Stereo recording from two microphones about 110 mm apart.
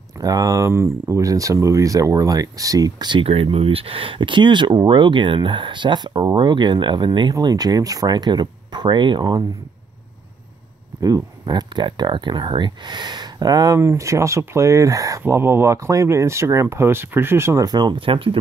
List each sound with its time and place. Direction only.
0.2 s speech: 35° right (ahead or behind)
11.0 s speech: 30° right (ahead or behind)
17.6 s speech: 40° right (ahead or behind)